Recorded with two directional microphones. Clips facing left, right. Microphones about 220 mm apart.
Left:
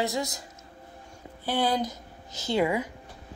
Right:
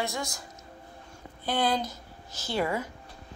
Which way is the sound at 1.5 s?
10° left (ahead or behind).